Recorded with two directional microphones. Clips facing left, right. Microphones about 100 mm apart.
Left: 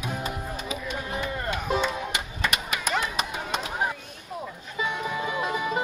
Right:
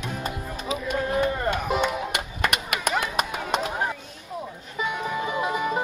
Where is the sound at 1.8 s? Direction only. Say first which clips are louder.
Right 2 dB; 60° right (ahead or behind).